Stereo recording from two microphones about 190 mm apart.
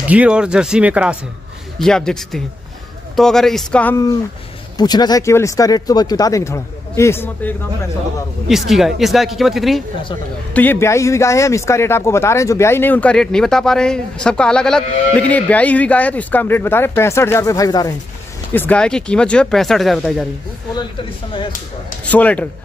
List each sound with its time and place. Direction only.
0.1 s speech: 5° right (ahead or behind)
4.7 s speech: 20° left (ahead or behind)
8.5 s speech: centre (ahead or behind); by 17.9 s 20° left (ahead or behind)
18.5 s speech: 10° left (ahead or behind)
22.1 s speech: 5° left (ahead or behind)